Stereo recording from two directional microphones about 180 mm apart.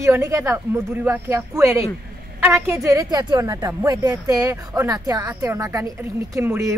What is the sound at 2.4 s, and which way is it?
A woman's voice, 15° right (ahead or behind).